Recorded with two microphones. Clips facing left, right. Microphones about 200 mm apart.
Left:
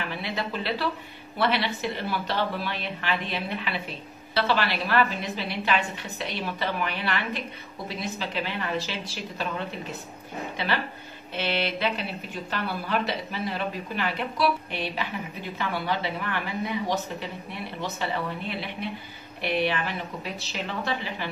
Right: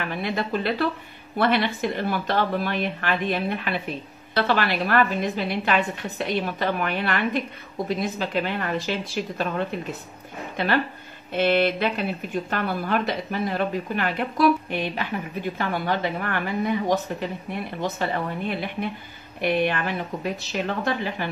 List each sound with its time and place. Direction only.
0.1 s speech: 50° right (ahead or behind)
11.3 s speech: 50° right (ahead or behind)